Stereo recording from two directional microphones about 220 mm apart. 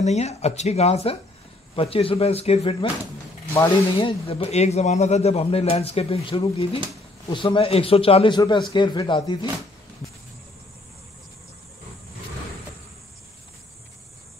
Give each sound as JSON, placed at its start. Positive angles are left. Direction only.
{"t": 0.0, "sound": "speech", "side_deg": 30}